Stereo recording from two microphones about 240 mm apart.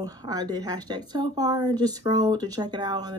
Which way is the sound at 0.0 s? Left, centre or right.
Centre.